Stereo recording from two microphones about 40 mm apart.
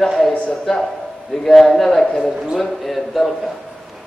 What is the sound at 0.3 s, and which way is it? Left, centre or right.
Speech, left.